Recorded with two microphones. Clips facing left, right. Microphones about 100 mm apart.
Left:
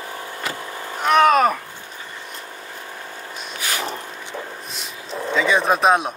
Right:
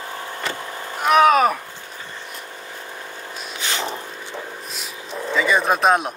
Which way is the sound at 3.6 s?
25° right (ahead or behind).